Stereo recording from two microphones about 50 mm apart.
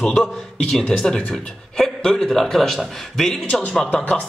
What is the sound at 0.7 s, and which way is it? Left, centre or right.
Speech, centre.